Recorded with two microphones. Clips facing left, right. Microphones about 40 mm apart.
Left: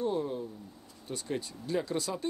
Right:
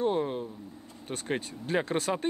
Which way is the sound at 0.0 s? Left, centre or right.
Right.